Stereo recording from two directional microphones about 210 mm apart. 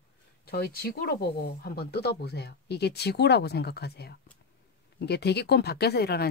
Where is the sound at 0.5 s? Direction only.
50° left (ahead or behind).